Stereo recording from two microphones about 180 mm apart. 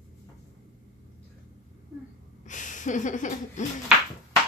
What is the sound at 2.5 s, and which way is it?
Speech, 45° left (ahead or behind).